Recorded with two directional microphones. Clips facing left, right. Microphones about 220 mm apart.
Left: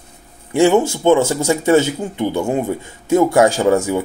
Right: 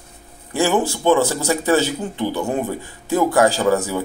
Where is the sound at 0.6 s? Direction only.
25° left (ahead or behind).